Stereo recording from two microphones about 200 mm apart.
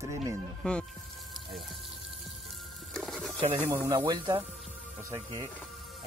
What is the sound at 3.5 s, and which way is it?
Speech, 10° right (ahead or behind).